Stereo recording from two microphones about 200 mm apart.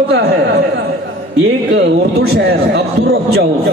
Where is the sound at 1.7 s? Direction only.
60° right (ahead or behind).